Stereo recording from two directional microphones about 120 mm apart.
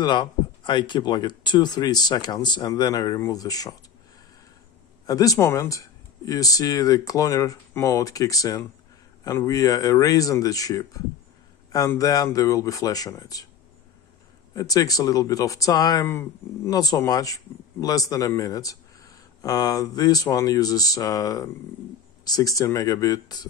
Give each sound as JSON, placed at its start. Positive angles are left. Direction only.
{"t": 0.0, "sound": "a man's voice", "side_deg": 40}
{"t": 5.0, "sound": "speech", "side_deg": 30}
{"t": 12.0, "sound": "speech", "side_deg": 30}
{"t": 14.5, "sound": "speech", "side_deg": 30}
{"t": 16.1, "sound": "speech", "side_deg": 20}
{"t": 16.7, "sound": "a man's voice", "side_deg": 30}